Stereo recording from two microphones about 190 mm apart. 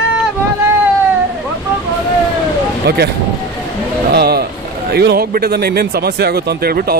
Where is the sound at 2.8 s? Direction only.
65° right (ahead or behind).